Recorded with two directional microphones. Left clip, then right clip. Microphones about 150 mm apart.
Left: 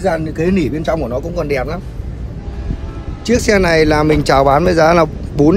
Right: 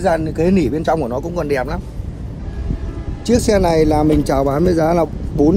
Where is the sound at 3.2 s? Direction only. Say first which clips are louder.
Left 2 dB; 50° left (ahead or behind).